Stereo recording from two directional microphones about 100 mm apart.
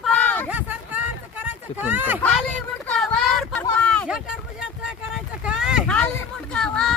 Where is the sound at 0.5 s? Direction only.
15° right (ahead or behind).